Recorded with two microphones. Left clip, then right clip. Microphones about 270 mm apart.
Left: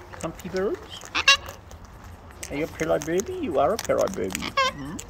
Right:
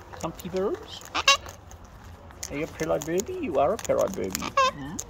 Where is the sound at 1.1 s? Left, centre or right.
Right.